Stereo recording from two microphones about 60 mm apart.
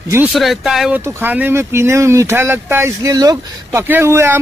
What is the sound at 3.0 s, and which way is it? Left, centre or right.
Speech, right.